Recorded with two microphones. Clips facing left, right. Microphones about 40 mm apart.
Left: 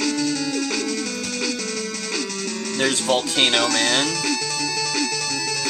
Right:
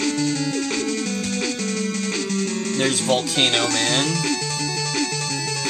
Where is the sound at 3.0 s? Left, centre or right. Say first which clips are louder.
Left 1 dB; centre.